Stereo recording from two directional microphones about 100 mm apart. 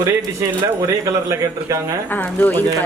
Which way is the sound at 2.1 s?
20° left (ahead or behind).